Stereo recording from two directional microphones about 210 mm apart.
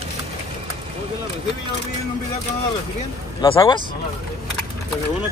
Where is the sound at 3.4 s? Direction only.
25° left (ahead or behind).